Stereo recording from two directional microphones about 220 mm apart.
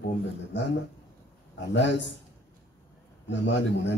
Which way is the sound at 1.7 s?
55° left (ahead or behind).